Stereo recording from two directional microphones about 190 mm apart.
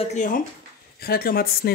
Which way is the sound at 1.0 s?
50° left (ahead or behind).